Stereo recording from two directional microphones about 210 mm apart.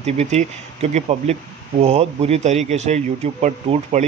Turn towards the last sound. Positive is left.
turn(degrees=-35)  # may be behind; listen again after turning